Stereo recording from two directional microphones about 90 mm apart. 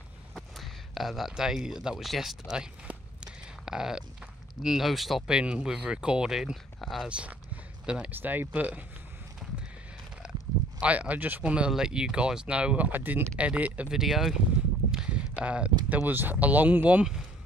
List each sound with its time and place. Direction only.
0.3 s speech: centre (ahead or behind)
7.1 s speech: 15° right (ahead or behind)
8.1 s speech: 20° right (ahead or behind)
10.8 s speech: 15° right (ahead or behind)
14.9 s a sound: 10° right (ahead or behind)
15.9 s speech: 25° right (ahead or behind)